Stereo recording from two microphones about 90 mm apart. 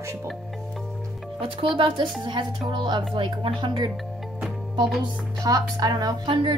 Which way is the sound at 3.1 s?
70° right (ahead or behind).